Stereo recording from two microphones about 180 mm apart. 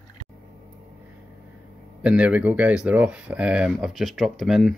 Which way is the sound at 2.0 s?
5° right (ahead or behind).